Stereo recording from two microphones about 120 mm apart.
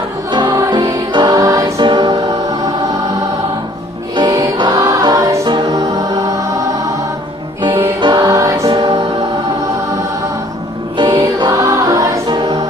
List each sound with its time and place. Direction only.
0.3 s music: 40° right (ahead or behind)
4.2 s music: 35° right (ahead or behind)
8.0 s music: 35° right (ahead or behind)
11.0 s music: 35° right (ahead or behind)
12.3 s music: 40° right (ahead or behind)